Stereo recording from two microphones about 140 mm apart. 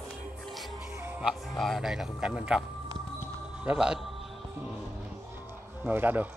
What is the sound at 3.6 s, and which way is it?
Speech, 5° right (ahead or behind).